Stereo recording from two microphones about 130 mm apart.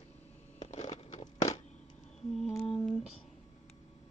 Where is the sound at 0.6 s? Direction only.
60° left (ahead or behind).